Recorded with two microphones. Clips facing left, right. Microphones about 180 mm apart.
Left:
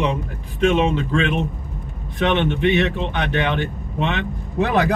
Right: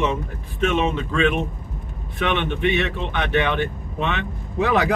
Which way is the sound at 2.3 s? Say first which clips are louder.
Left 3 dB; 35° left (ahead or behind).